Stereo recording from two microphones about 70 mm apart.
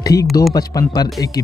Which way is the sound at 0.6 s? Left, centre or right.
Left.